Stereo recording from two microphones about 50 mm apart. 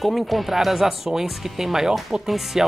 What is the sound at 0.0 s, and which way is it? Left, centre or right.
Speech, centre.